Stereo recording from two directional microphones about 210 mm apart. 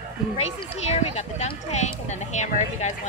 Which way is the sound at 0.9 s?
30° left (ahead or behind).